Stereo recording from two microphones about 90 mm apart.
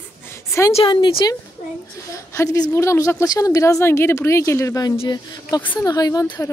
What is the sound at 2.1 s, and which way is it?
A woman's voice, 35° left (ahead or behind).